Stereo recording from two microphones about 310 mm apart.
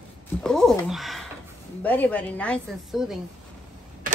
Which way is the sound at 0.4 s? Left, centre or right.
Centre.